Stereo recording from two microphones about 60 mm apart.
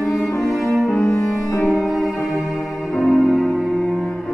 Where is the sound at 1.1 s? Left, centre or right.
Left.